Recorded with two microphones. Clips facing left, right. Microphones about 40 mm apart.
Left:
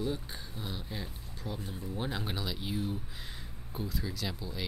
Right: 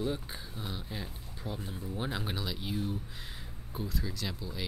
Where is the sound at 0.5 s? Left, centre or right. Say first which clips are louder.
Even; centre.